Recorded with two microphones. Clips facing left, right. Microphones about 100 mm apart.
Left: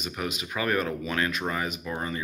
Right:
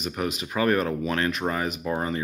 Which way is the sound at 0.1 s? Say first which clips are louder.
Right 3 dB; 40° right (ahead or behind).